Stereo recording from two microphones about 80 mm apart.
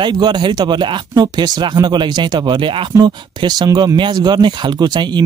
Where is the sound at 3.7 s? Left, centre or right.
Right.